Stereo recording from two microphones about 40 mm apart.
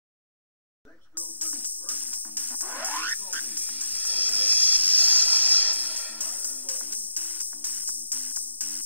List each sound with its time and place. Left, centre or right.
1.1 s music: left
2.5 s music: right
3.4 s music: left